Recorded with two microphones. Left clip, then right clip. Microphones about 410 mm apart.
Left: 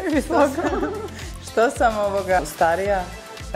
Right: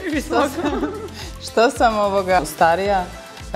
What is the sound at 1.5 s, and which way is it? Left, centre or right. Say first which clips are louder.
A woman's voice: right 3 dB; right.